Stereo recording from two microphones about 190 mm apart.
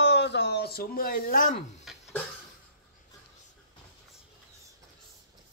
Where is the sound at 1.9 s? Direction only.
Centre (ahead or behind).